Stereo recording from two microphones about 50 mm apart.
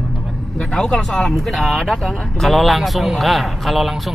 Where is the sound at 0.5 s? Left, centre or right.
Centre.